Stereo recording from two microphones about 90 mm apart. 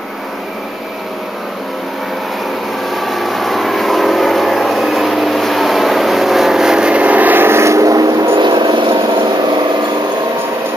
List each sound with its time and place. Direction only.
2.9 s vehicle: centre (ahead or behind); by 8.3 s 40° right (ahead or behind)
8.4 s vehicle: 55° right (ahead or behind)